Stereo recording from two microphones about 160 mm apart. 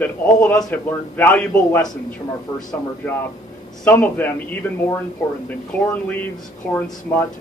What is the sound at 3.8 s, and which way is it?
Speech, 10° left (ahead or behind).